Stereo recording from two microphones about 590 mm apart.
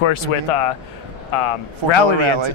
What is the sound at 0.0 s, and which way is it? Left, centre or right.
Speech, left.